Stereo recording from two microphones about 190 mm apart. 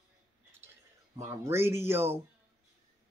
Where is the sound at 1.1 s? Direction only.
15° right (ahead or behind).